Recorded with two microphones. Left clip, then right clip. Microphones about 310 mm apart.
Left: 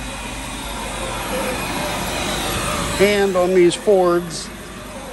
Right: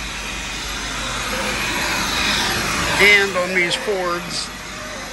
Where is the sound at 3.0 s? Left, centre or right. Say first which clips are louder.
Right 2 dB; centre.